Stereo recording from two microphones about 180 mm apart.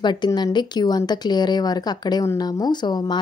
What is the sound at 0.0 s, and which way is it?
Speech, 25° left (ahead or behind).